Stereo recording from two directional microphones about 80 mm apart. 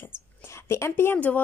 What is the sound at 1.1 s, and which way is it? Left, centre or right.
Speech, centre.